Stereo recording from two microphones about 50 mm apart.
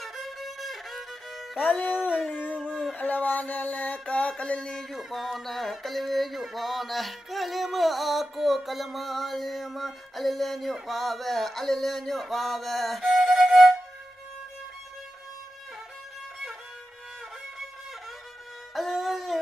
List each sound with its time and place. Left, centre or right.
0.0 s music: centre
2.3 s a sound: left
2.7 s speech: centre
3.0 s a sound: left
4.9 s music: centre
18.8 s music: centre